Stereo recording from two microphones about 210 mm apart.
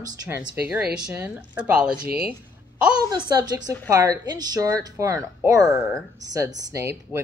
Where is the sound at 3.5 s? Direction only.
20° right (ahead or behind).